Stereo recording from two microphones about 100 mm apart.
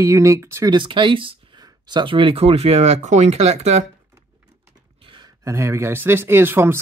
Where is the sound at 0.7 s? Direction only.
55° right (ahead or behind); by 3.8 s 90° right.